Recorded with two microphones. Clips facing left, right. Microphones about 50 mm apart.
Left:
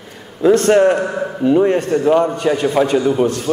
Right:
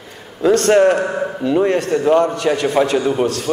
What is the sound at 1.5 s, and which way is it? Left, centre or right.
A man's voice, right.